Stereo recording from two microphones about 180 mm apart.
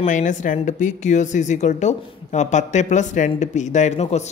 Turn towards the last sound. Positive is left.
turn(degrees=40)  # may be behind; listen again after turning